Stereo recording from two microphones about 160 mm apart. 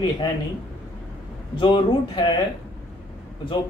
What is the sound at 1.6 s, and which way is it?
Speech, 30° left (ahead or behind).